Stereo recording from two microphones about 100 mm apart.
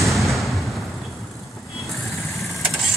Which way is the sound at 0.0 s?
Centre (ahead or behind).